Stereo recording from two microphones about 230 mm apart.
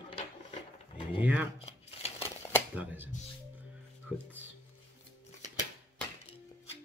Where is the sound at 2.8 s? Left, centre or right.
Centre.